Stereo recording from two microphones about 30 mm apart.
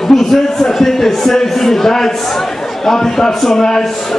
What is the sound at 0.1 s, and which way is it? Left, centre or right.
A man's voice, centre.